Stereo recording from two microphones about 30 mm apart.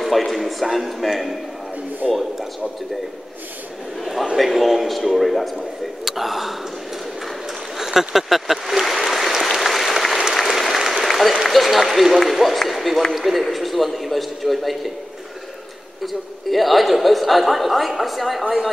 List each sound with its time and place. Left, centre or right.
0.0 s a man's voice: centre
2.0 s speech: centre
4.0 s a sound: centre
4.4 s a man's voice: centre
7.7 s a sound: centre
9.3 s applause: centre
11.4 s run: centre
12.3 s a man's voice: centre
16.0 s a man's voice: centre